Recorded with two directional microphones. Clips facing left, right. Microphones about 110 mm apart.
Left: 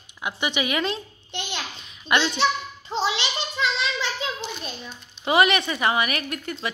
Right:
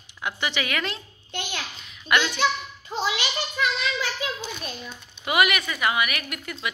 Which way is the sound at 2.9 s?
25° left (ahead or behind).